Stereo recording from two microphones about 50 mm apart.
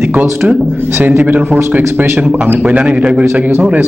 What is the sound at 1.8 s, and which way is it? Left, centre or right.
Speech, right.